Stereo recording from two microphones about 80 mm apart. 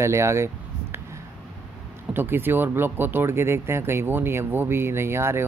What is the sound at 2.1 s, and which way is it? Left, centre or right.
Speech, right.